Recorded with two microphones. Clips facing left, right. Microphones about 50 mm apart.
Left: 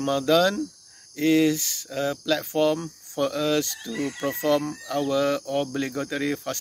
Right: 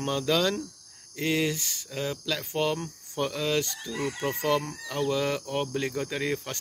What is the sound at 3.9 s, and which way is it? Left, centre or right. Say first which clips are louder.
Speech: left 2 dB; centre.